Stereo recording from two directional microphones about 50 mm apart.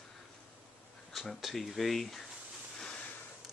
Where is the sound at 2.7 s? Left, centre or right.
Centre.